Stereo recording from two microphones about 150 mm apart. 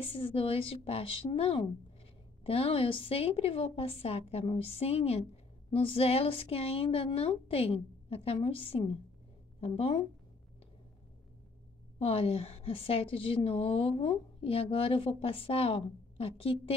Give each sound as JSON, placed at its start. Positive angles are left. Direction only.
{"t": 0.0, "sound": "a woman's voice", "side_deg": 35}
{"t": 12.0, "sound": "a woman's voice", "side_deg": 40}